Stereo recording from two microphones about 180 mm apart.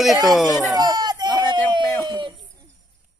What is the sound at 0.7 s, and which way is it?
Speech, 20° right (ahead or behind).